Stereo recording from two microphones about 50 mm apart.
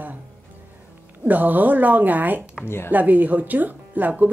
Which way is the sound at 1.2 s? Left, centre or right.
Right.